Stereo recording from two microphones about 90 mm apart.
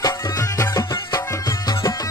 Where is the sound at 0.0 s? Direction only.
35° left (ahead or behind).